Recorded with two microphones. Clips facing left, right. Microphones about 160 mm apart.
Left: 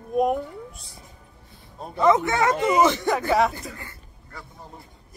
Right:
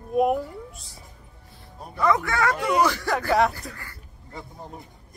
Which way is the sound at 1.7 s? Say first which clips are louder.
Left 4 dB; 25° left (ahead or behind).